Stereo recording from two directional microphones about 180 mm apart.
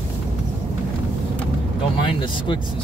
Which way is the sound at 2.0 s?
25° left (ahead or behind).